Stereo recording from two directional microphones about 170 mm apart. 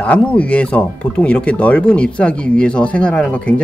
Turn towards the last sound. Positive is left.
turn(degrees=5)  # may be behind; listen again after turning